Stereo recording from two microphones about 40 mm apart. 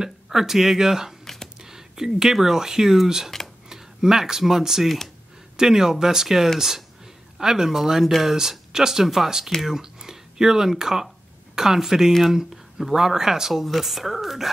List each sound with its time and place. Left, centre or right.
0.0 s speech: centre
1.2 s a sound: centre
1.6 s whispering: centre
2.3 s speech: centre
4.8 s speech: centre
5.6 s speech: centre
8.3 s speech: centre